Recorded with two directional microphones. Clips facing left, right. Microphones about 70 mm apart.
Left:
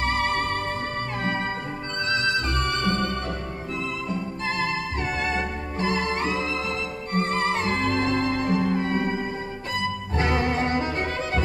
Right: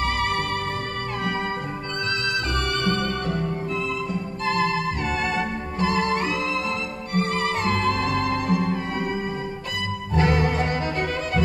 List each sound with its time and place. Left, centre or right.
0.0 s music: left
2.5 s music: left
5.3 s music: left
10.1 s music: left